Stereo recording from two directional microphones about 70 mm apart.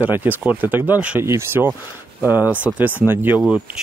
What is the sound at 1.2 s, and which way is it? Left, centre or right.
Speech, right.